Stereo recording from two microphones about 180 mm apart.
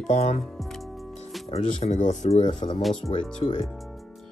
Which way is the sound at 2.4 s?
25° left (ahead or behind).